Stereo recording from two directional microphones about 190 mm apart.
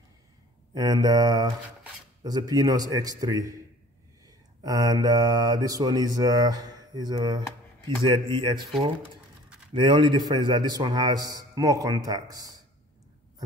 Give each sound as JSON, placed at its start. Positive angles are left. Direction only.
{"t": 0.7, "sound": "speech", "side_deg": -20}
{"t": 4.6, "sound": "speech", "side_deg": -20}